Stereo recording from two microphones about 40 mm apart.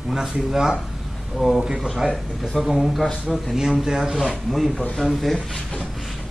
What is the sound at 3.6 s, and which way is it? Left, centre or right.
Speech, centre.